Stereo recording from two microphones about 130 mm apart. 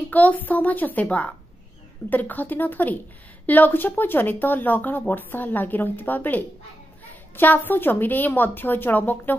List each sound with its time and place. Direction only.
0.1 s speech: 10° left (ahead or behind)